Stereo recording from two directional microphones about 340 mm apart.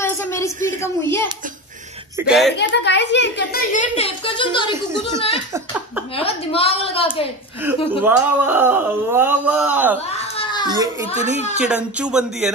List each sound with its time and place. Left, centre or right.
0.0 s a sound: centre
0.7 s a woman's voice: centre
2.6 s a woman's voice: left; by 4.7 s centre
6.1 s a woman's voice: centre
8.0 s speech: centre
10.1 s a sound: centre
10.7 s a child's voice: centre
11.5 s speech: centre